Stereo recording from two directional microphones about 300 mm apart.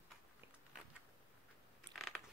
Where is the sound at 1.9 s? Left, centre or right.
Centre.